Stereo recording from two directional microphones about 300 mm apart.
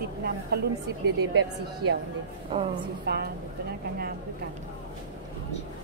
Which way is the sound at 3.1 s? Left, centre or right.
Right.